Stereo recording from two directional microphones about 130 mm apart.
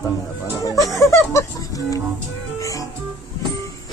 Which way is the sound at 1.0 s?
20° left (ahead or behind).